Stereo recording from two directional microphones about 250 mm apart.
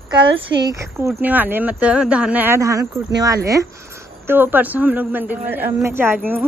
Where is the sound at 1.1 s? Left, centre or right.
Centre.